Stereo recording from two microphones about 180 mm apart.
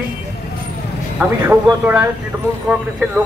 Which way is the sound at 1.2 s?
10° right (ahead or behind).